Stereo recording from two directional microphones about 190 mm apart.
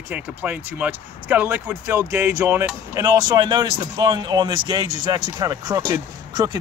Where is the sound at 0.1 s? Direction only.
10° right (ahead or behind).